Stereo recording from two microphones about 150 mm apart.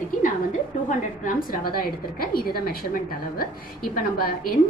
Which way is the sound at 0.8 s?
65° left (ahead or behind).